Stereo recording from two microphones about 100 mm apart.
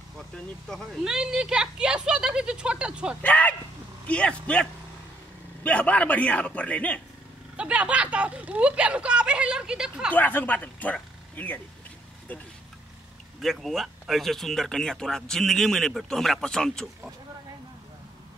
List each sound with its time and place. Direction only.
1.0 s speech: 10° right (ahead or behind)
3.2 s a man's voice: 15° left (ahead or behind)
7.5 s speech: 10° right (ahead or behind)
10.1 s speech: 20° left (ahead or behind)
13.4 s speech: centre (ahead or behind)